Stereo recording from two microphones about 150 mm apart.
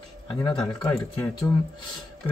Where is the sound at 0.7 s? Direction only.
25° left (ahead or behind).